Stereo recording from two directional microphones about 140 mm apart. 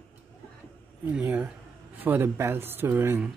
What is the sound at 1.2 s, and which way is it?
Speech, 15° right (ahead or behind).